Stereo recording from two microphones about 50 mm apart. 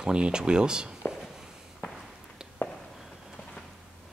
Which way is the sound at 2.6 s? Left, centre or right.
Left.